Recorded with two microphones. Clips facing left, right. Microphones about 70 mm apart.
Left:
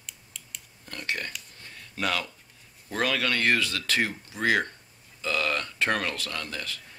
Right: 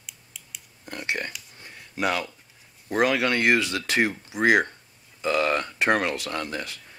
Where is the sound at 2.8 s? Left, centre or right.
Right.